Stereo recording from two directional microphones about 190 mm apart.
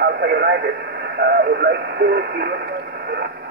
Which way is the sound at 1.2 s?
60° right (ahead or behind).